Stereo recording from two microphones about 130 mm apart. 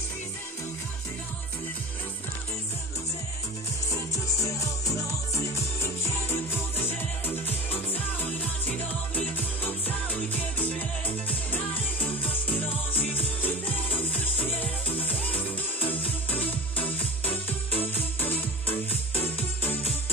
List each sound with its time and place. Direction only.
3.9 s music: 25° left (ahead or behind)